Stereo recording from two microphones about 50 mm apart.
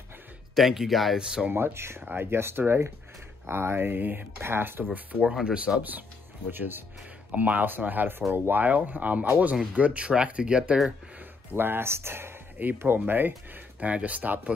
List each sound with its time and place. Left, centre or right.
0.6 s speech: centre
1.1 s speech: centre
1.5 s speech: right
2.0 s speech: right
4.9 s speech: right
5.8 s speech: right
7.3 s speech: right
9.8 s speech: right
11.5 s speech: right
13.7 s speech: right